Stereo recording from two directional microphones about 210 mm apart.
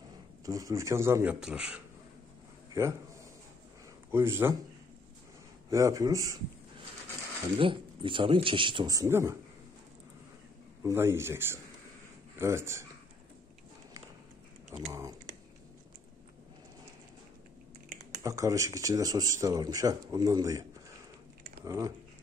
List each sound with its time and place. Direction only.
0.5 s a man's voice: 15° right (ahead or behind)
4.1 s speech: 10° right (ahead or behind)
5.7 s speech: 15° right (ahead or behind)
7.5 s speech: 25° right (ahead or behind)
10.8 s speech: 10° right (ahead or behind)
14.7 s speech: 15° right (ahead or behind)
18.2 s speech: 15° right (ahead or behind)
21.6 s speech: 15° right (ahead or behind)